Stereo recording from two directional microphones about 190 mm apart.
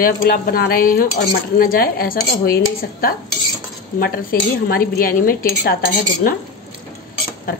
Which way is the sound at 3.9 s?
50° left (ahead or behind).